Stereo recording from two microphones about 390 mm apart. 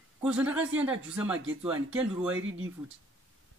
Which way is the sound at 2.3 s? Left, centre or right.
Right.